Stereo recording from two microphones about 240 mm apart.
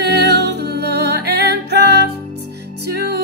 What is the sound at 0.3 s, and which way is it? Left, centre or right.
Music, right.